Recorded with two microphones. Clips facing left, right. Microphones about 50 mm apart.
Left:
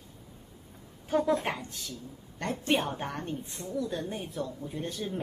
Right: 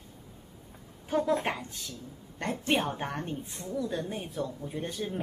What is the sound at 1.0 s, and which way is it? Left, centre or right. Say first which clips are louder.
Speech: left 1 dB; centre.